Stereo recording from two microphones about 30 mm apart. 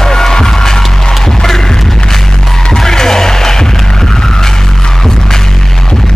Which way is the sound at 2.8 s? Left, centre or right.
Centre.